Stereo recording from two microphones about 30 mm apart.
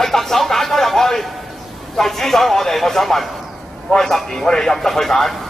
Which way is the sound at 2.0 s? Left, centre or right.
Centre.